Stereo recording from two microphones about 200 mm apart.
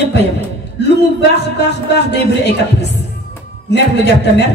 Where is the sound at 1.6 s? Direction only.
55° left (ahead or behind).